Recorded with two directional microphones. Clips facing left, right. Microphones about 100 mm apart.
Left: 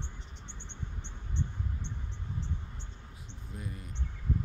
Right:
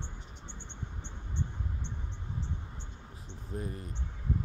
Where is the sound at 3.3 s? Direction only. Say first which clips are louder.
Right 5 dB; 40° right (ahead or behind).